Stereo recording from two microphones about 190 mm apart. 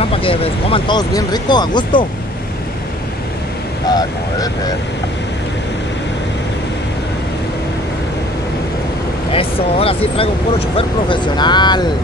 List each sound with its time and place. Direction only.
0.0 s speech: 30° left (ahead or behind)
9.3 s speech: 30° left (ahead or behind)